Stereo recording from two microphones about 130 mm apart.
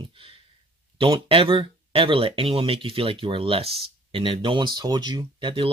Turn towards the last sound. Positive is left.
turn(degrees=-40)  # may be behind; listen again after turning